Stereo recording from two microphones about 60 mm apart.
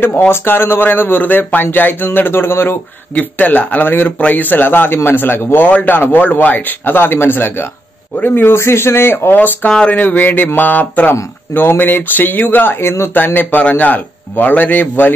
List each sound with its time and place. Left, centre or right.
0.3 s a man's voice: left
3.2 s a man's voice: left
8.5 s speech: left
9.7 s speech: centre
9.9 s a man's voice: left
12.8 s speech: left
13.1 s a man's voice: left